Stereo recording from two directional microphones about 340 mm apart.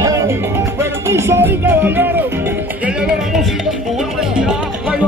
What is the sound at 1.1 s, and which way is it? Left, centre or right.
Speech, centre.